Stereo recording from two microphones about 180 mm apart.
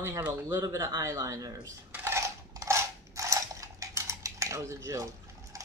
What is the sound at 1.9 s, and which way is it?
Mechanisms, 15° right (ahead or behind).